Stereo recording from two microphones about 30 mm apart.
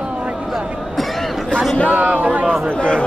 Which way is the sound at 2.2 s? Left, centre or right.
Right.